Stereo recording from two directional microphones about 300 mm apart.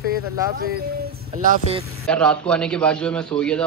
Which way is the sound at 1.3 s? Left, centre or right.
Right.